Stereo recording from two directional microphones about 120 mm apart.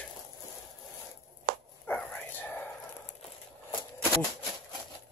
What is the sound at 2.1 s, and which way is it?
Whispering, 15° left (ahead or behind).